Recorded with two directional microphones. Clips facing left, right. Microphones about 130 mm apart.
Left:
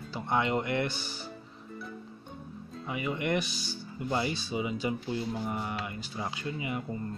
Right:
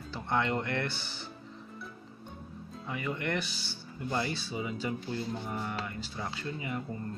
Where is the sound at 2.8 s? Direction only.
15° left (ahead or behind).